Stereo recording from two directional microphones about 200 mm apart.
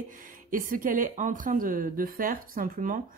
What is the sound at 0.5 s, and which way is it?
Speech, 40° right (ahead or behind).